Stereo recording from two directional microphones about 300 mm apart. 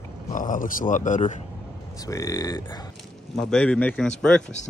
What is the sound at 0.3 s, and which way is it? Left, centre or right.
Speech, left.